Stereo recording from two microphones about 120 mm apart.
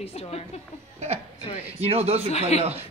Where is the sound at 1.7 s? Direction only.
60° right (ahead or behind).